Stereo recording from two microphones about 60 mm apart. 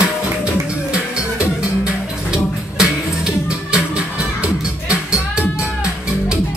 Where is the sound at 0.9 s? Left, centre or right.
Centre.